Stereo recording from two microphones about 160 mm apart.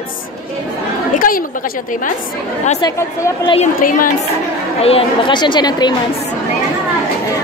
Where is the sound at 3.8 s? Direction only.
60° left (ahead or behind).